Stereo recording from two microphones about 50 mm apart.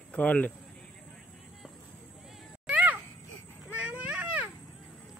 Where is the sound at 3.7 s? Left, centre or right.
Right.